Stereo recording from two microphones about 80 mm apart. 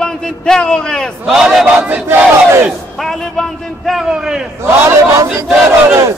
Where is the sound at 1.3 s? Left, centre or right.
Centre.